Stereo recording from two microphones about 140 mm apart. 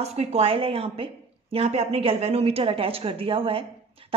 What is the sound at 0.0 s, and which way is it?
A woman's voice, 45° right (ahead or behind).